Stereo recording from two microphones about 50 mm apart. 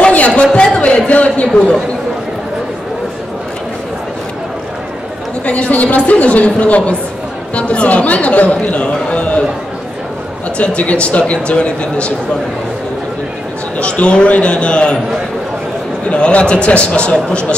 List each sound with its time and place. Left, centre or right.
0.0 s a sound: left
5.4 s speech: left
10.6 s speech: left
13.7 s speech: left
16.1 s speech: left